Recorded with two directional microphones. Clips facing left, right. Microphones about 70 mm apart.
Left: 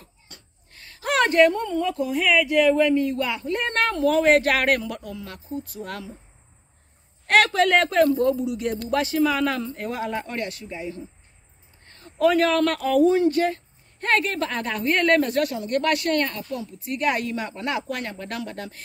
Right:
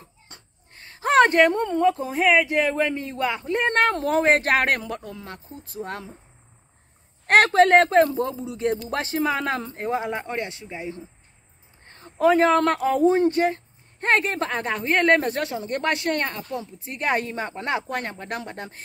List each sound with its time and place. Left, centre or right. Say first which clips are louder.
0.0 s a woman's voice: right 1 dB; right
7.2 s a woman's voice: right 3 dB; right